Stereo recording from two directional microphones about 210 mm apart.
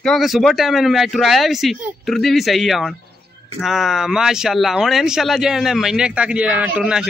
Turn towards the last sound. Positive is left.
turn(degrees=-5)  # may be behind; listen again after turning